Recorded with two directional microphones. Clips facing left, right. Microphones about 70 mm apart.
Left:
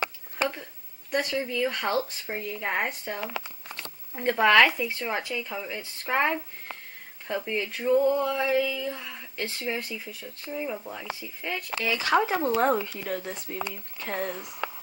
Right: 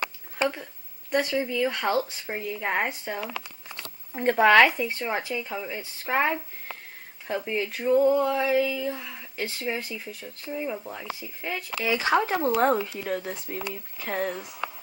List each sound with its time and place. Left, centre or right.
1.1 s speech: centre
3.2 s a sound: left
4.1 s speech: centre